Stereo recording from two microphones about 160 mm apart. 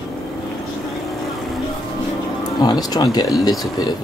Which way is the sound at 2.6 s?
25° left (ahead or behind).